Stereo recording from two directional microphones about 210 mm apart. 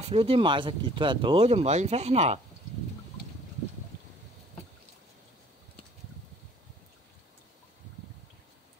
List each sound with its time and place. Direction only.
0.0 s speech: 25° right (ahead or behind)